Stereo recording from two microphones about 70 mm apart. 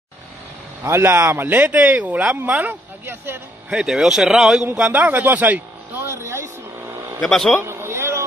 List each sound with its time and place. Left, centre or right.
0.8 s speech: right
3.7 s speech: centre
4.7 s speech: centre
6.0 s a sound: right
7.2 s speech: centre
7.6 s a sound: right